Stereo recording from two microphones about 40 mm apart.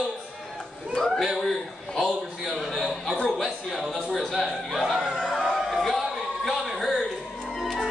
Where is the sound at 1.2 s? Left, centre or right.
Centre.